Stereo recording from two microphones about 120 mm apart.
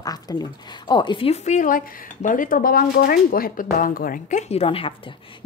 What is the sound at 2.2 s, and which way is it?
Speech, 90° left.